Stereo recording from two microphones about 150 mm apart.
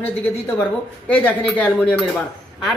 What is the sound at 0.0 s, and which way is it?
A woman's voice, 10° left (ahead or behind).